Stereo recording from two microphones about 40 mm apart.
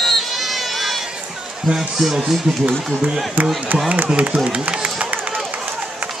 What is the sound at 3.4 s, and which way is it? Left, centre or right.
Speech, right.